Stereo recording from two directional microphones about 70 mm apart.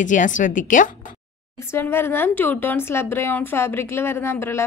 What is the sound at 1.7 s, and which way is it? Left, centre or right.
A woman's voice, left.